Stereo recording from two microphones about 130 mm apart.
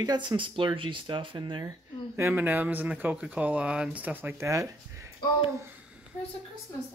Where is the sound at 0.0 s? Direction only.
35° right (ahead or behind).